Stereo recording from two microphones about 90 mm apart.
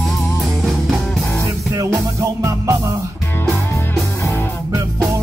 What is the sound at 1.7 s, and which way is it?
Music, 35° right (ahead or behind).